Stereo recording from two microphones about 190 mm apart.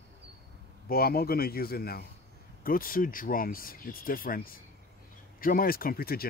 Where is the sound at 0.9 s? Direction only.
55° left (ahead or behind).